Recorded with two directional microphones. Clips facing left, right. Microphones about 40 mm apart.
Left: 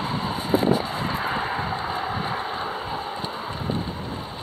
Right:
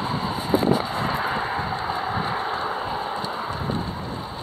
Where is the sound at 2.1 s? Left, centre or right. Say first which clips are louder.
Right 2 dB; centre.